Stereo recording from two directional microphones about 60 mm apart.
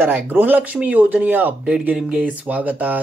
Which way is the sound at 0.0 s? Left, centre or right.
Right.